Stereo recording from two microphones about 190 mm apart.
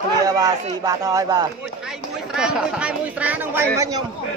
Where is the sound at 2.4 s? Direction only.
5° right (ahead or behind).